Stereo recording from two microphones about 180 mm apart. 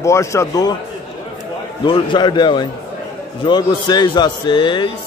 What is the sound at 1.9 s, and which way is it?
A man's voice, 25° left (ahead or behind).